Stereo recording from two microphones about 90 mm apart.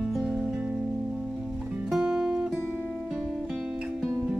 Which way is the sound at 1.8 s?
5° right (ahead or behind).